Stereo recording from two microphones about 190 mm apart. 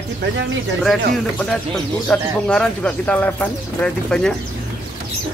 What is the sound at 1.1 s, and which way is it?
Speech, centre (ahead or behind).